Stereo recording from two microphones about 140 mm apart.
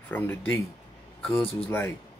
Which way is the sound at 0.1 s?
15° left (ahead or behind).